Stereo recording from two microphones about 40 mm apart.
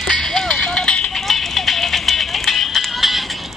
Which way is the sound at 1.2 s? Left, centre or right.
Centre.